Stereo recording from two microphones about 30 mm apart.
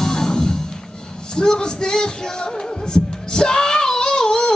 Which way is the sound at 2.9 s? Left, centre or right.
Left.